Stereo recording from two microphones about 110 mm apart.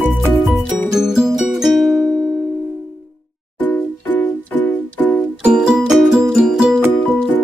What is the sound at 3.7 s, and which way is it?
Music, 15° left (ahead or behind).